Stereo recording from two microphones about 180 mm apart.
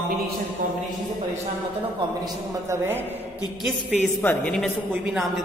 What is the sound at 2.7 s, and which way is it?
Speech, 10° right (ahead or behind).